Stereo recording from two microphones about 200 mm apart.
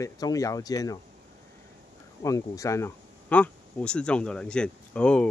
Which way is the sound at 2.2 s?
15° left (ahead or behind).